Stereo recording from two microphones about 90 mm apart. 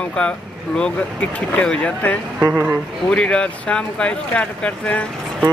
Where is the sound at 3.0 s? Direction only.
10° left (ahead or behind).